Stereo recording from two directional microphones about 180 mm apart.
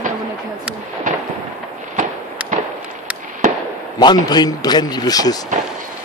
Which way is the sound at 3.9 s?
25° left (ahead or behind).